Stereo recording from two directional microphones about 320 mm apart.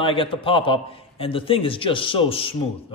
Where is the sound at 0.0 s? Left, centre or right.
Centre.